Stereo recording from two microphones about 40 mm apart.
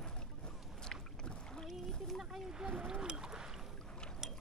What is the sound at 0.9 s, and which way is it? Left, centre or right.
Rowboat, centre.